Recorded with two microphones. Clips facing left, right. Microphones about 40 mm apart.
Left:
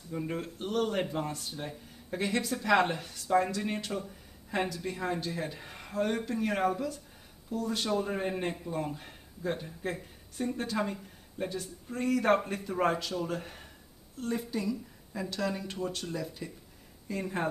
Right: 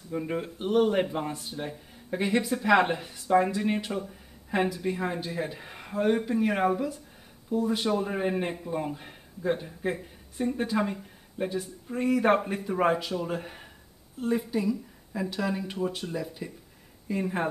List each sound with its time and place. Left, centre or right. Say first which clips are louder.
0.1 s speech: right 4 dB; centre